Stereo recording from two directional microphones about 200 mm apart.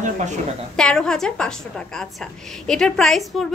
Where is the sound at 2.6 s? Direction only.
5° left (ahead or behind).